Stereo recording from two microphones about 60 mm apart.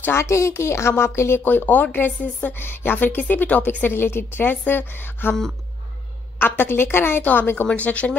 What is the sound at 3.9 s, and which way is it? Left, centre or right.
Speech, left.